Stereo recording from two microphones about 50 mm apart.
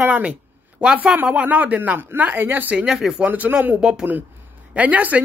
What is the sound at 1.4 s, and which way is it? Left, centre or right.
Speech, right.